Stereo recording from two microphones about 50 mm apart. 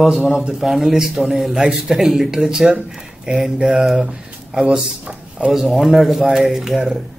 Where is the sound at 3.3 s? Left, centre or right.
Right.